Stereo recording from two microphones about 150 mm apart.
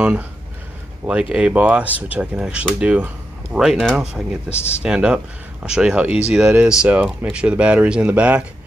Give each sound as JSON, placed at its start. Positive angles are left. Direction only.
{"t": 0.0, "sound": "speech", "side_deg": -10}
{"t": 4.5, "sound": "speech", "side_deg": 45}
{"t": 4.8, "sound": "speech", "side_deg": -5}